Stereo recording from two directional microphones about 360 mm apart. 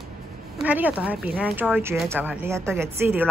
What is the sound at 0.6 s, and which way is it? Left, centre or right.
Speech, centre.